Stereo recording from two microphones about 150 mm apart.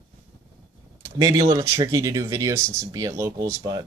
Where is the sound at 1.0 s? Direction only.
20° right (ahead or behind).